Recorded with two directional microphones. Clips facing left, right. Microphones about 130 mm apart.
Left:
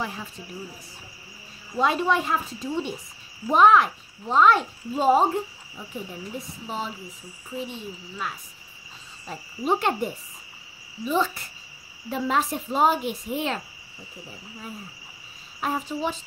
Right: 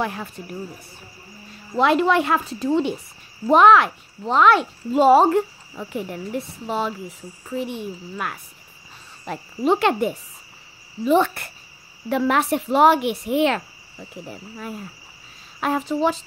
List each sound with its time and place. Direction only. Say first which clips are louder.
0.0 s speech: right 6 dB; 60° right (ahead or behind)
1.8 s a woman's voice: right 5 dB; 85° right; by 8.4 s 60° right (ahead or behind)
9.2 s cricket: right 7 dB; 80° right
11.1 s a woman's voice: right 7 dB; 65° right (ahead or behind)
15.6 s cricket: right 6 dB; 85° right